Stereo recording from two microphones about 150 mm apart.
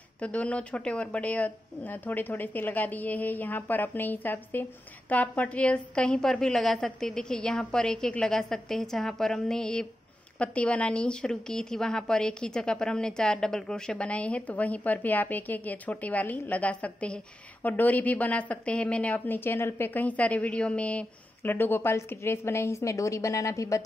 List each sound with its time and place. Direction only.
0.2 s a woman's voice: 10° left (ahead or behind)